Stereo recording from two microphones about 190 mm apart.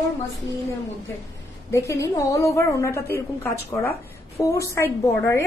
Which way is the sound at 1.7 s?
15° left (ahead or behind).